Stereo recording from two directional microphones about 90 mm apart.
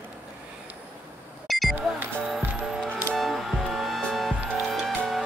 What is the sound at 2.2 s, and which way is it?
Music, 5° right (ahead or behind).